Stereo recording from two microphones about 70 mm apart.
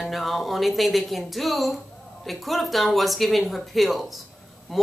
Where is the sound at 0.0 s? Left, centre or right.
Centre.